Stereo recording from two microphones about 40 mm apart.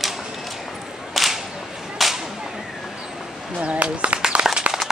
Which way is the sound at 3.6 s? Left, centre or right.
Right.